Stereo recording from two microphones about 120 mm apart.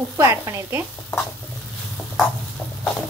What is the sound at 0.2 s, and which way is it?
Speech, 25° right (ahead or behind).